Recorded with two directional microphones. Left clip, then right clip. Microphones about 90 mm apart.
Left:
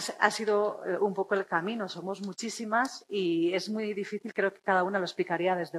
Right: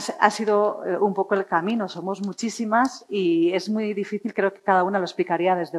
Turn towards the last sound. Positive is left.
turn(degrees=-35)  # may be behind; listen again after turning